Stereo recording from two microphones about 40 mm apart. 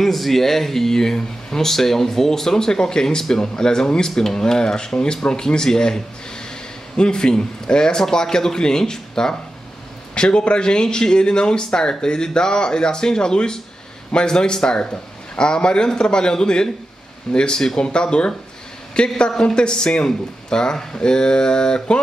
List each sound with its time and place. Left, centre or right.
0.0 s speech: centre; by 22.0 s left